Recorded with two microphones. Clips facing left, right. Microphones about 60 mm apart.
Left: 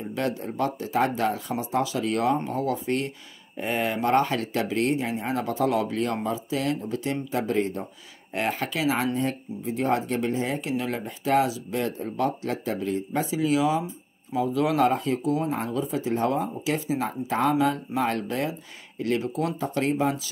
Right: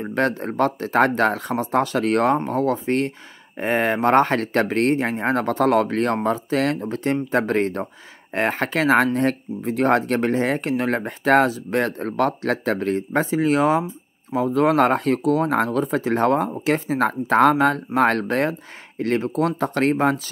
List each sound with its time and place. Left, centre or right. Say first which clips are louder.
0.0 s speech: right 6 dB; right
2.3 s speech: right 5 dB; right
8.3 s speech: right 5 dB; right